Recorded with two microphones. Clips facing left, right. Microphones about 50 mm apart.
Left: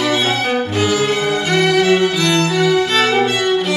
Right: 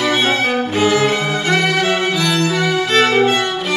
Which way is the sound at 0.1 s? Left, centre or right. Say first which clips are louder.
Right 1 dB; right.